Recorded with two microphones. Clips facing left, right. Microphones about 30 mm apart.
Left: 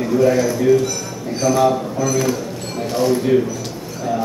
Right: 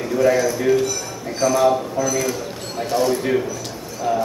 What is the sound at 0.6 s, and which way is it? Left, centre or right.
Speech, centre.